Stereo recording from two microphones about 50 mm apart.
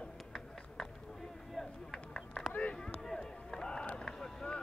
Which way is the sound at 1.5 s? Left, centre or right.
Centre.